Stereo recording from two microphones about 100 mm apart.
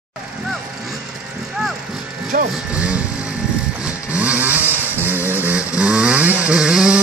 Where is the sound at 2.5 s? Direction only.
10° right (ahead or behind).